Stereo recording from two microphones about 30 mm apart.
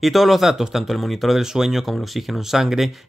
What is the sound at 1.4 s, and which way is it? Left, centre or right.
Speech, centre.